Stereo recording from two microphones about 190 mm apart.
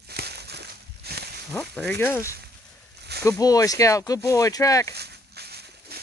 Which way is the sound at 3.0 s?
60° right (ahead or behind).